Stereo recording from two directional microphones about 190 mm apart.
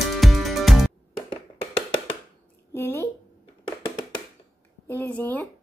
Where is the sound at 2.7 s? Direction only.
10° left (ahead or behind).